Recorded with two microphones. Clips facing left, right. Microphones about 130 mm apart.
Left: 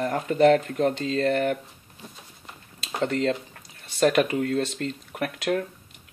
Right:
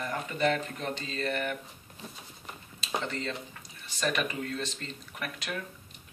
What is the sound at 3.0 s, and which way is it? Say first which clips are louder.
Speech: left 11 dB; 65° left (ahead or behind).